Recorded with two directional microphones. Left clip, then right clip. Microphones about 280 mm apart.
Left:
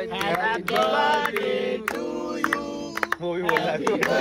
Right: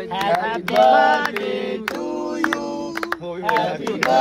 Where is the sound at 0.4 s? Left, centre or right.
Right.